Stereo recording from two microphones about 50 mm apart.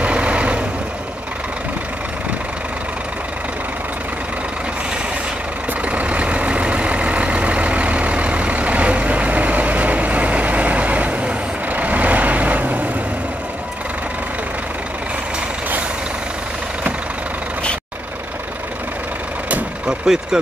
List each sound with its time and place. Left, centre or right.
0.0 s vehicle: right
5.9 s vehicle: right
19.9 s vehicle: centre